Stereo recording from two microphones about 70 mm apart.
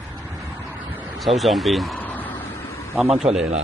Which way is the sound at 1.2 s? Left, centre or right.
Centre.